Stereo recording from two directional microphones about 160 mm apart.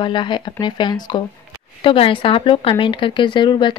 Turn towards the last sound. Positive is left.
turn(degrees=30)  # may be behind; listen again after turning